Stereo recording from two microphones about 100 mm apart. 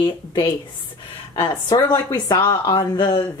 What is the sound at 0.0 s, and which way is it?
Speech, 45° left (ahead or behind).